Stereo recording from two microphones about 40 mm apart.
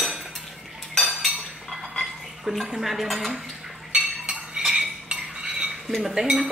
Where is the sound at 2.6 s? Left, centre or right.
Centre.